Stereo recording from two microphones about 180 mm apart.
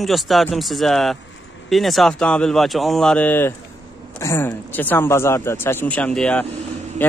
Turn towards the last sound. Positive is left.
turn(degrees=10)  # may be behind; listen again after turning